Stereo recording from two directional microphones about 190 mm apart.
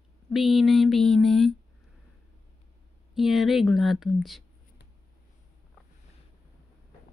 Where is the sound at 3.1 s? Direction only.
Centre (ahead or behind).